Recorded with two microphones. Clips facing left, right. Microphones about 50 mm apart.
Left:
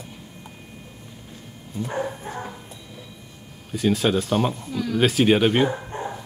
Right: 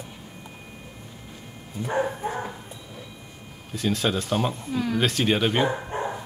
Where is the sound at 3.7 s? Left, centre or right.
Centre.